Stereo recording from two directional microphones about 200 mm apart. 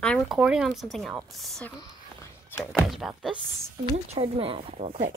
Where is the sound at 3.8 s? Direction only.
30° right (ahead or behind).